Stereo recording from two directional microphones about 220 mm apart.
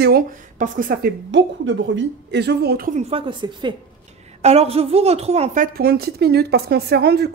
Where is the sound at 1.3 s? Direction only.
55° right (ahead or behind).